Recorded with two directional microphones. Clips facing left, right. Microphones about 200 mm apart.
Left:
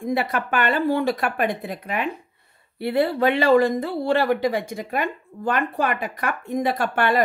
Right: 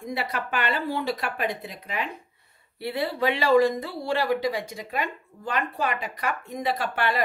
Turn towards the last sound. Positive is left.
turn(degrees=50)  # may be behind; listen again after turning